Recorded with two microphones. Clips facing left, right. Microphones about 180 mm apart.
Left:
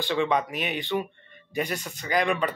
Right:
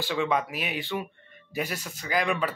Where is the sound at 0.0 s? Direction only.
5° right (ahead or behind).